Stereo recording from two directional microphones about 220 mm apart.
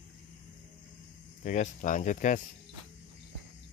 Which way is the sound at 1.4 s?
35° left (ahead or behind).